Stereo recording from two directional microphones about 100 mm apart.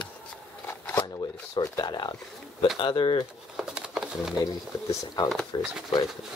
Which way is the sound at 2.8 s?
60° left (ahead or behind).